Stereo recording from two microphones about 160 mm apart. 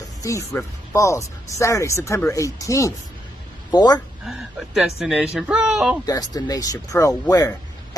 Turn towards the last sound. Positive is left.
turn(degrees=25)  # may be behind; listen again after turning